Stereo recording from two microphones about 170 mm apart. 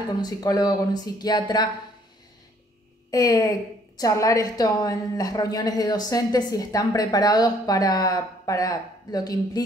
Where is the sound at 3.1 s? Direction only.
20° left (ahead or behind).